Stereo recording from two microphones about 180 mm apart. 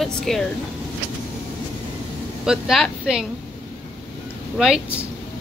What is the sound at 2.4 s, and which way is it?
Speech, centre (ahead or behind).